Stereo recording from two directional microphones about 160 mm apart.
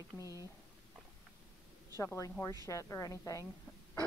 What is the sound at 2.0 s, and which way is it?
A woman's voice, 20° left (ahead or behind).